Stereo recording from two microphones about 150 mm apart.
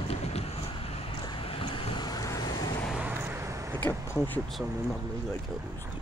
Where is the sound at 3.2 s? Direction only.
15° right (ahead or behind).